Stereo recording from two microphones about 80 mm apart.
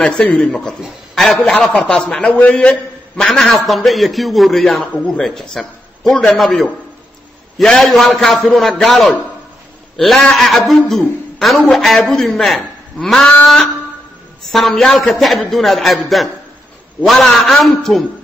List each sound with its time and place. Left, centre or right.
0.0 s a man's voice: centre
17.0 s a man's voice: centre